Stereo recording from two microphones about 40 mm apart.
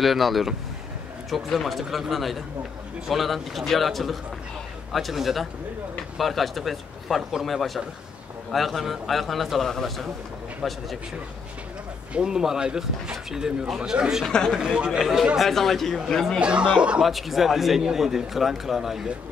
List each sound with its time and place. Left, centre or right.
0.0 s speech: centre
10.6 s speech: centre
12.1 s speech: centre
14.2 s speech: centre
14.6 s speech: centre
14.9 s speech: centre
16.1 s speech: centre
16.3 s speech: right
17.0 s speech: centre